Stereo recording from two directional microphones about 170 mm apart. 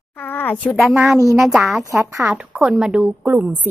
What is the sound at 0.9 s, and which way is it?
Speech, 15° right (ahead or behind).